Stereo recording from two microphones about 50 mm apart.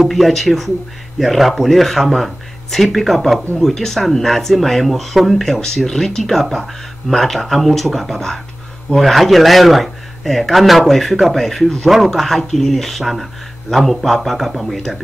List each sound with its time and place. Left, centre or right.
0.0 s speech: centre